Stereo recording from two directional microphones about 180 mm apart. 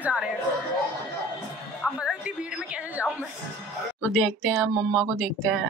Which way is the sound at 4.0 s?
5° left (ahead or behind).